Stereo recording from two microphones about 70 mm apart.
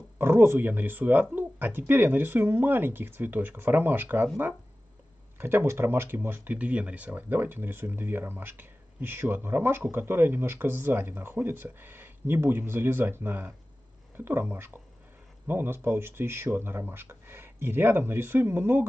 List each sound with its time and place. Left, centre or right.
0.2 s speech: right
5.4 s speech: right